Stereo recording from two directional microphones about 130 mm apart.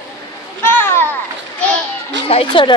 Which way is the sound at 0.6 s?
15° left (ahead or behind).